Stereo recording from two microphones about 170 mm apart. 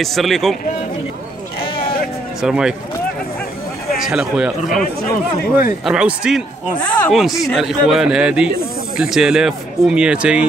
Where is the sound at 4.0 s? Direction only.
5° right (ahead or behind).